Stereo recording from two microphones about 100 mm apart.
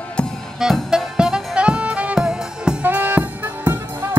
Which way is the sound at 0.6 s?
5° right (ahead or behind).